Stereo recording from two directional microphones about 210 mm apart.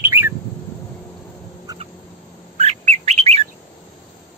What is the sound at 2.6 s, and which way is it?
Bird, 30° right (ahead or behind).